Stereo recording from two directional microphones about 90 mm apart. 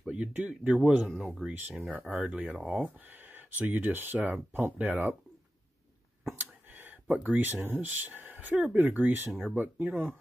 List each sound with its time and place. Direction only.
0.0 s speech: 15° right (ahead or behind)
1.4 s speech: 15° right (ahead or behind)
6.8 s speech: 20° right (ahead or behind)